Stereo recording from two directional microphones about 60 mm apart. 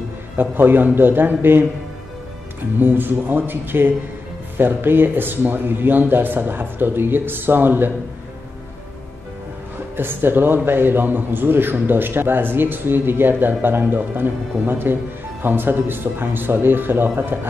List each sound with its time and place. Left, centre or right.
0.4 s a man's voice: right
2.8 s a man's voice: right
9.9 s a man's voice: right